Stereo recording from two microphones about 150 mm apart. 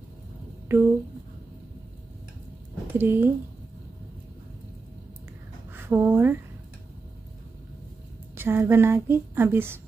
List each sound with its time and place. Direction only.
0.7 s speech: 15° right (ahead or behind)
2.9 s a woman's voice: 15° right (ahead or behind)
5.7 s speech: 15° right (ahead or behind)
8.4 s speech: 15° right (ahead or behind)